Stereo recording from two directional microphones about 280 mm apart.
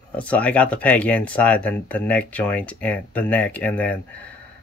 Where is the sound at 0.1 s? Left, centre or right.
Centre.